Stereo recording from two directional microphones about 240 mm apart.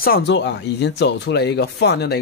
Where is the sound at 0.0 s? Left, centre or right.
Left.